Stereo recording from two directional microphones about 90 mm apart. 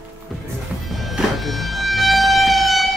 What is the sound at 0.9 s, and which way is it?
Music, centre (ahead or behind).